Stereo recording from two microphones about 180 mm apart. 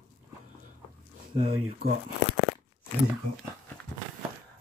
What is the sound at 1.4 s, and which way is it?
Speech, 35° right (ahead or behind).